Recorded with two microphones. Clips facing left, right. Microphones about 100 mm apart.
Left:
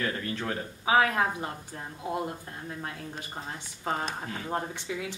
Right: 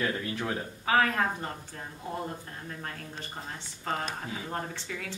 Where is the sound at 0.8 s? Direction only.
10° left (ahead or behind).